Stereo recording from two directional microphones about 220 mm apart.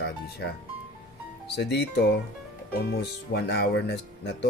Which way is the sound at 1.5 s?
50° left (ahead or behind).